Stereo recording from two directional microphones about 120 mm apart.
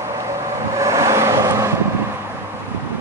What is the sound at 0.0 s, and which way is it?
Vehicle, 25° right (ahead or behind).